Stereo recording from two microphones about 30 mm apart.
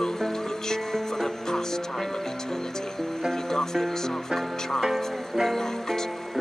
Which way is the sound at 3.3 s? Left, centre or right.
Centre.